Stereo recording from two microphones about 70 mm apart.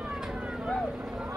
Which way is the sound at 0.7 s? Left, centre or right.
Centre.